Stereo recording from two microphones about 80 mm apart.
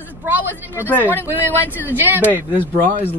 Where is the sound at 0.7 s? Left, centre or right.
Left.